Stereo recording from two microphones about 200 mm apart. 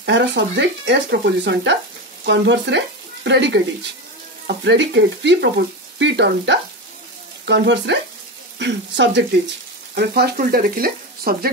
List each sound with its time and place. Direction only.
0.0 s speech: 60° right (ahead or behind)
9.9 s frying: 55° right (ahead or behind)